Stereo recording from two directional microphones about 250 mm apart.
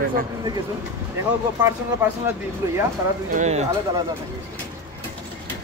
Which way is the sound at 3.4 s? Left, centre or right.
Right.